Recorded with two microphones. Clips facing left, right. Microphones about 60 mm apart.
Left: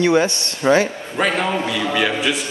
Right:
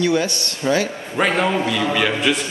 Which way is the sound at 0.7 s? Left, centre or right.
Left.